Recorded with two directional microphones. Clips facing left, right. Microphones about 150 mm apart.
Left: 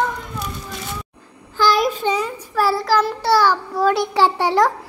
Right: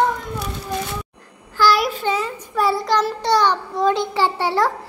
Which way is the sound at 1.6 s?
20° left (ahead or behind).